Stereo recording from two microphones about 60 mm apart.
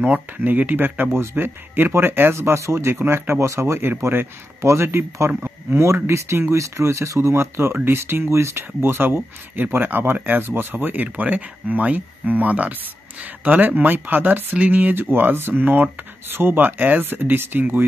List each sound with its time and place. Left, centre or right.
0.0 s speech: right
3.4 s speech: right
17.0 s speech: right